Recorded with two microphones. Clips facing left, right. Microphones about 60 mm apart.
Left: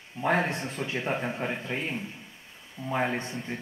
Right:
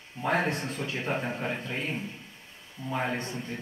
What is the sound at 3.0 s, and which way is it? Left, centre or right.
Speech, centre.